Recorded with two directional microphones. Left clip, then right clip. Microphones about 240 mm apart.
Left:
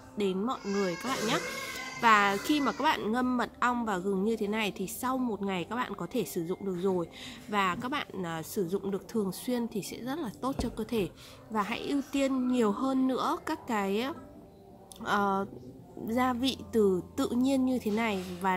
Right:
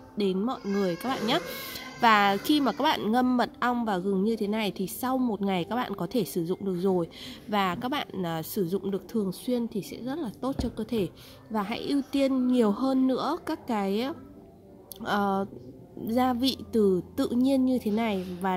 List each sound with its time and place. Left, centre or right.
0.2 s speech: right